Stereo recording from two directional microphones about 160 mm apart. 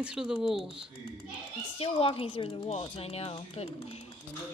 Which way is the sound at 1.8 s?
35° left (ahead or behind).